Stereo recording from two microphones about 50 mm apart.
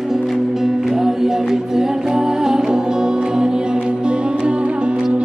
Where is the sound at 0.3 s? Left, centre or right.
Centre.